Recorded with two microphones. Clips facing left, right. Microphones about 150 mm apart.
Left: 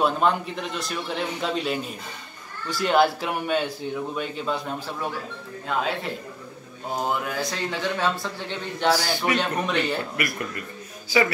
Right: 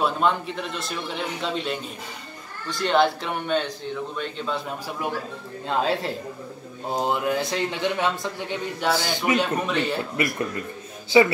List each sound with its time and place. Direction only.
0.0 s speech: centre (ahead or behind)
5.7 s speech: 35° right (ahead or behind)
7.0 s speech: 20° right (ahead or behind)
9.3 s speech: centre (ahead or behind)
10.1 s speech: 25° right (ahead or behind)